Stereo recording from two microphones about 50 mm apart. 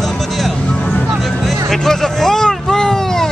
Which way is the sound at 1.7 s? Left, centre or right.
Centre.